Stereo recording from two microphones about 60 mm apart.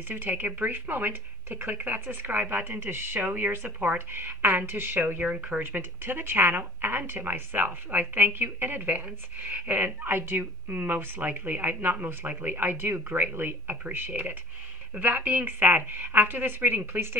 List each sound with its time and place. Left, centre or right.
0.1 s a woman's voice: right
5.2 s speech: centre
5.6 s a woman's voice: right